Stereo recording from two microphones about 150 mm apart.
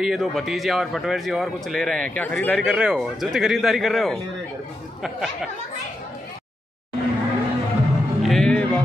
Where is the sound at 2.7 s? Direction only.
5° right (ahead or behind).